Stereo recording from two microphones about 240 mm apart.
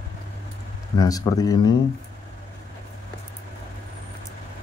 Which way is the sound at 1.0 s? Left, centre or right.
Centre.